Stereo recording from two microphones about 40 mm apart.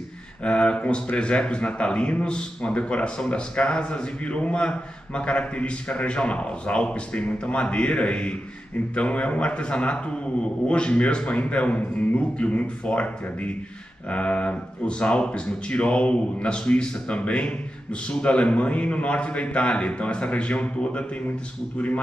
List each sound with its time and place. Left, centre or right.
0.4 s a man's voice: left